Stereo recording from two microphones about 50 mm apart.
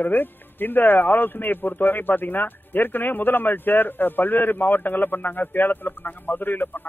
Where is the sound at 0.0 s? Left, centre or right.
Left.